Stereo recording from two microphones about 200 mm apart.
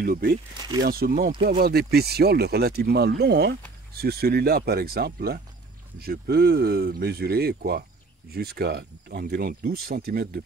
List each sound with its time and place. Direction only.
0.0 s speech: 45° right (ahead or behind)